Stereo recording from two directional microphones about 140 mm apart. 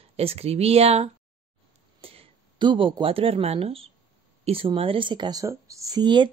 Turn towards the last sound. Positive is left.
turn(degrees=-30)  # may be behind; listen again after turning